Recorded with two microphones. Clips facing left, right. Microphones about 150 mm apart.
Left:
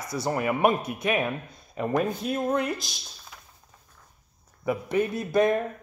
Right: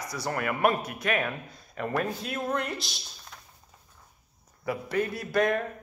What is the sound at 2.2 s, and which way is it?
Speech, 20° left (ahead or behind).